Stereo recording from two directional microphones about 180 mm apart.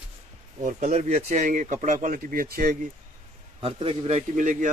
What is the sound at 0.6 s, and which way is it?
Speech, 40° right (ahead or behind).